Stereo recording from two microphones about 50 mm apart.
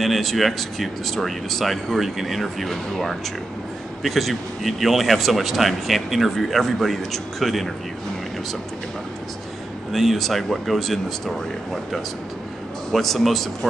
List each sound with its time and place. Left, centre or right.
0.0 s speech: centre
9.9 s speech: centre